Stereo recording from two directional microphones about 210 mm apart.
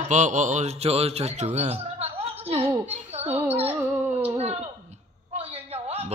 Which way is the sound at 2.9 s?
30° right (ahead or behind).